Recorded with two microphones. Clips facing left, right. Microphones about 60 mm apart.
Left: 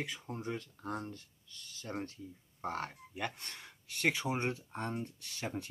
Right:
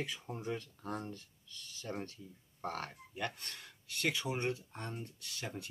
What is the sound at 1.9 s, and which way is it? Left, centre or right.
Speech, left.